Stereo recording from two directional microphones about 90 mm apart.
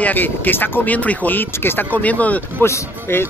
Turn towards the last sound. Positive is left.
turn(degrees=25)  # may be behind; listen again after turning